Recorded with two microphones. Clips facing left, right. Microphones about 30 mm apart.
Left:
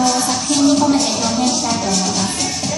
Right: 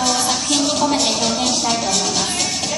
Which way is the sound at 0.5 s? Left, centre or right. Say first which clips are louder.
Left 6 dB; centre.